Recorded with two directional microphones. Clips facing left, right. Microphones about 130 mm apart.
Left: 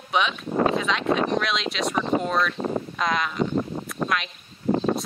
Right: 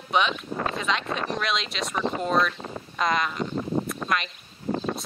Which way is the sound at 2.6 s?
55° left (ahead or behind).